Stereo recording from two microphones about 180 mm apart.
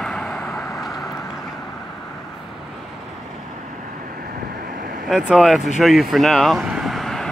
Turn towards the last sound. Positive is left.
turn(degrees=0)  # may be behind; listen again after turning